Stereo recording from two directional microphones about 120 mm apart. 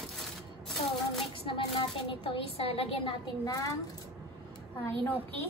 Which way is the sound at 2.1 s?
50° left (ahead or behind).